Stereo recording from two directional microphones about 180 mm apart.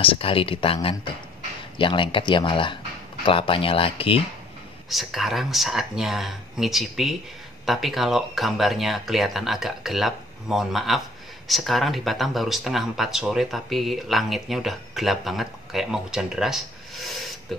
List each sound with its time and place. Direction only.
0.0 s speech: 30° left (ahead or behind)
4.8 s speech: centre (ahead or behind)
17.5 s beatboxing: centre (ahead or behind)